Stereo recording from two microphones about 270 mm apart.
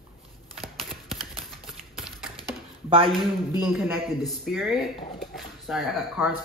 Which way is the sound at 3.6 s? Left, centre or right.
Centre.